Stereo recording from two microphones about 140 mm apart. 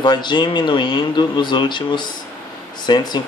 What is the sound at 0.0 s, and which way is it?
Speech, 35° left (ahead or behind).